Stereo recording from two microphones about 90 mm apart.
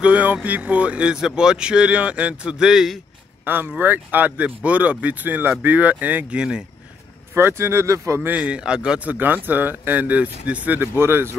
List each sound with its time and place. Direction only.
0.0 s a man's voice: 15° right (ahead or behind)
3.4 s a man's voice: 20° right (ahead or behind)
7.3 s speech: 30° right (ahead or behind)
8.2 s a man's voice: 15° right (ahead or behind)